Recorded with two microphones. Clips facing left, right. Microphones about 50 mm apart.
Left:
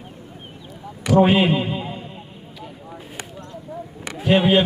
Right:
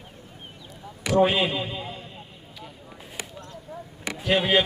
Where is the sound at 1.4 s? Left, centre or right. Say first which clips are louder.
Left 7 dB; left.